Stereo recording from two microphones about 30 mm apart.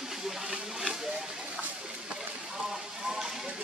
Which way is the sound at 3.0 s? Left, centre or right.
Centre.